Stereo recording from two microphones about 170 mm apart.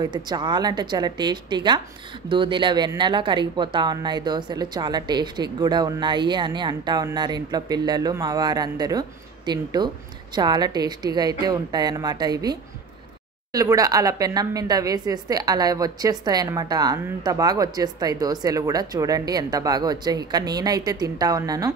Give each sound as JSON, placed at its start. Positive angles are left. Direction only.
{"t": 0.0, "sound": "a woman's voice", "side_deg": -25}